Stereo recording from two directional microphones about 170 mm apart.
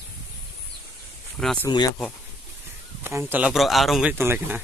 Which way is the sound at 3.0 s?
10° right (ahead or behind).